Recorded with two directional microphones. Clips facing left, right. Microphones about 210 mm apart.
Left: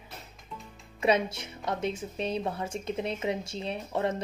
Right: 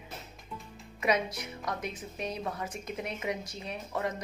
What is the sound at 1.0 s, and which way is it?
A woman's voice, 25° left (ahead or behind).